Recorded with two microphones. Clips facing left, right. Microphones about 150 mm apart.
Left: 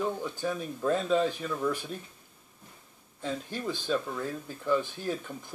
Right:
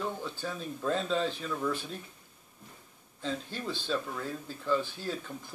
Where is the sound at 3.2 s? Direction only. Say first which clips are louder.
Left 2 dB; 15° left (ahead or behind).